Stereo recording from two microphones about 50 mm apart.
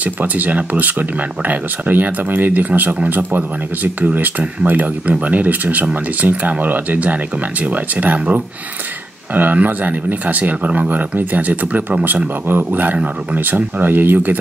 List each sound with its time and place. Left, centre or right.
0.0 s speech: right